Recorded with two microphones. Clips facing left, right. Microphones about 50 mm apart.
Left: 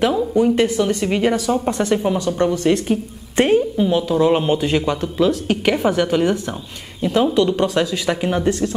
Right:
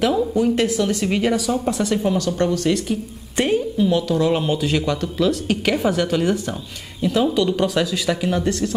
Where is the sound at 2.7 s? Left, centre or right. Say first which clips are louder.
Left 3 dB; left.